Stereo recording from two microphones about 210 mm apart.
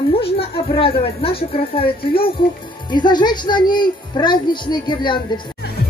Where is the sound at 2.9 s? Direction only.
20° left (ahead or behind).